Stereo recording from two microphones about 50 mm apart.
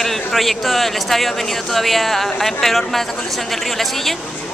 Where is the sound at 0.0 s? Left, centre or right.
Centre.